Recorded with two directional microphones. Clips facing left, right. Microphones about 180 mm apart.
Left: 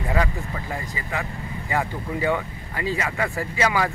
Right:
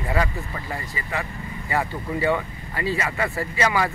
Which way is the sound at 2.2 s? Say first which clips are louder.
Right 1 dB; 15° left (ahead or behind).